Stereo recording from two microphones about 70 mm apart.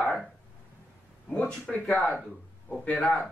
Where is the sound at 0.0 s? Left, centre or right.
Centre.